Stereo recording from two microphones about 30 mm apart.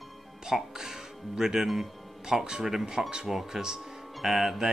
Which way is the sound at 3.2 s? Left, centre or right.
Centre.